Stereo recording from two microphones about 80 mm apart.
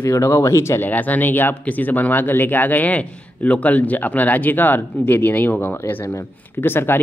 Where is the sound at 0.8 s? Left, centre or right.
Left.